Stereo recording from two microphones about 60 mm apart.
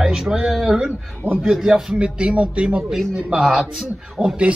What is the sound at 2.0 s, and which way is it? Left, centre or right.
Speech, centre.